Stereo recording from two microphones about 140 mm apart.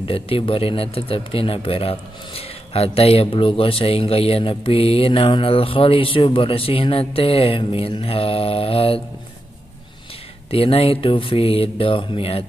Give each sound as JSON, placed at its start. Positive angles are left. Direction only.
{"t": 0.0, "sound": "a man's voice", "side_deg": 40}
{"t": 10.5, "sound": "a man's voice", "side_deg": 45}